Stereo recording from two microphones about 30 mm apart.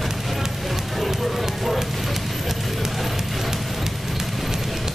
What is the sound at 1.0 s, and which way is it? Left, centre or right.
Music, centre.